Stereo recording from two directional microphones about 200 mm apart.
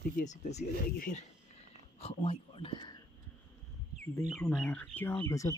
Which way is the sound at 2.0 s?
30° left (ahead or behind).